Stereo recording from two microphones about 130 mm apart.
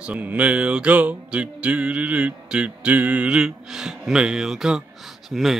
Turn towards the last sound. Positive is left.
turn(degrees=0)  # may be behind; listen again after turning